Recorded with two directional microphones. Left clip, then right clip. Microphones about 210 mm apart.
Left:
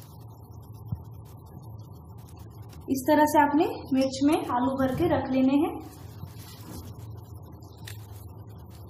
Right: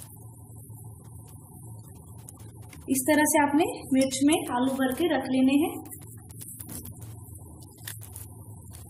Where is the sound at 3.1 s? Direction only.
20° right (ahead or behind).